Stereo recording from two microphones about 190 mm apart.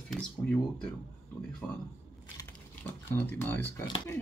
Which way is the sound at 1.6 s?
5° left (ahead or behind).